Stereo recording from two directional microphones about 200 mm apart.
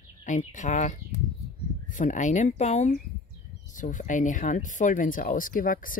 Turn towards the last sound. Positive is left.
turn(degrees=45)  # may be behind; listen again after turning